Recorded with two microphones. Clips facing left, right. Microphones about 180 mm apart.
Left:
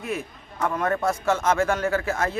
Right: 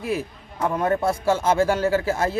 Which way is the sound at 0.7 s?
25° right (ahead or behind).